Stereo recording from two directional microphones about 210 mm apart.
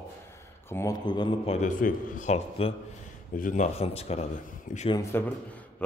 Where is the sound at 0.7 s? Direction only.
15° left (ahead or behind); by 4.3 s 30° left (ahead or behind).